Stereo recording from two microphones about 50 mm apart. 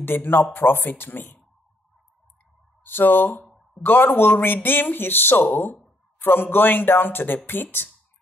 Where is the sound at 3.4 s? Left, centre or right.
Centre.